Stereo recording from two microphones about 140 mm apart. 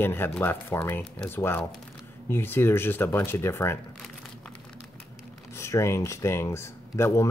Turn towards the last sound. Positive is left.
turn(degrees=20)  # may be behind; listen again after turning